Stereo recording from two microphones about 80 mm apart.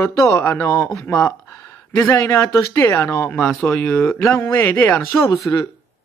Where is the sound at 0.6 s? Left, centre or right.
Left.